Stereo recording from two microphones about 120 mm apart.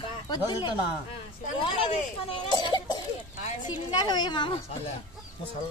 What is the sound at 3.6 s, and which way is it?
Speech, 35° left (ahead or behind).